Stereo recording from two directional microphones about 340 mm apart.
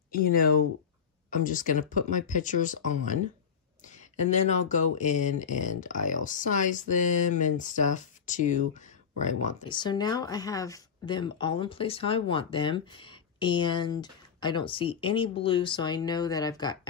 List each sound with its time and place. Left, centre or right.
0.1 s speech: left